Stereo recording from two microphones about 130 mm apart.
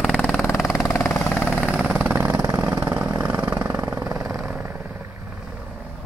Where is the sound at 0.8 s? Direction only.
20° left (ahead or behind).